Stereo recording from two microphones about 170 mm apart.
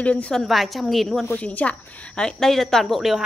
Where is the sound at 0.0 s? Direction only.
5° left (ahead or behind).